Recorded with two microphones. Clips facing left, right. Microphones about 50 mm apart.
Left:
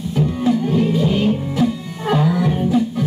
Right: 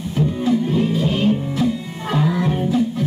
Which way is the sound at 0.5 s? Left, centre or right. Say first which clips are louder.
Left 1 dB; right.